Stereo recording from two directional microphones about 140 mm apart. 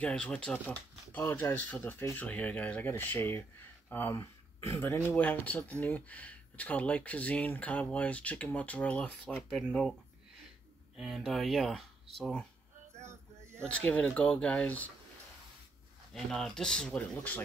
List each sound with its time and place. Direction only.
0.0 s speech: 5° left (ahead or behind)
11.0 s speech: centre (ahead or behind)
13.0 s male singing: 20° right (ahead or behind)
13.6 s speech: 10° left (ahead or behind)
16.1 s speech: centre (ahead or behind)